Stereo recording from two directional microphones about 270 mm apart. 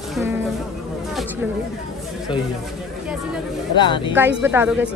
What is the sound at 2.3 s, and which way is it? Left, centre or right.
Speech, centre.